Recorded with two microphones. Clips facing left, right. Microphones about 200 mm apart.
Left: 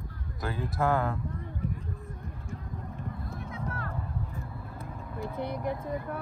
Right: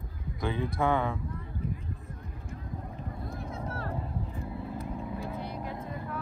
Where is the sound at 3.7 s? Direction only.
30° right (ahead or behind).